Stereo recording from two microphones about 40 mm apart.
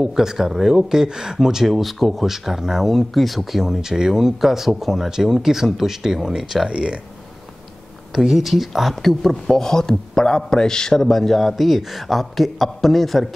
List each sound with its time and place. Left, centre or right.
0.0 s speech: centre
2.9 s speech: centre
6.7 s speech: right
8.1 s speech: centre